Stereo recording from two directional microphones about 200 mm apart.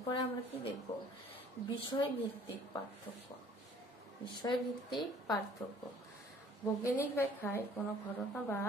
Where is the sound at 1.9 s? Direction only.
20° left (ahead or behind).